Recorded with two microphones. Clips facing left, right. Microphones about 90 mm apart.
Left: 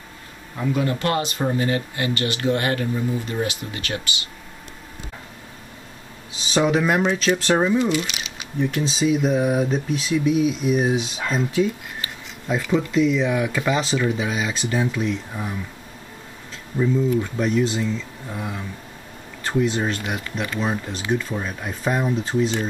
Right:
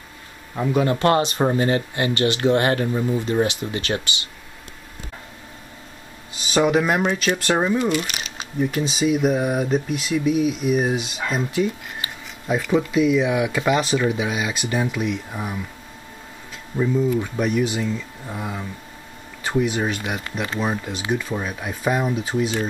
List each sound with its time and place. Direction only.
1.0 s speech: 35° right (ahead or behind)
6.5 s speech: 5° right (ahead or behind)
7.8 s speech: 50° right (ahead or behind)
8.5 s speech: 10° right (ahead or behind)
16.7 s speech: 10° right (ahead or behind)